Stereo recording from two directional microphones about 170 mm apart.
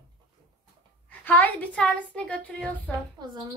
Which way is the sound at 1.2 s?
10° left (ahead or behind).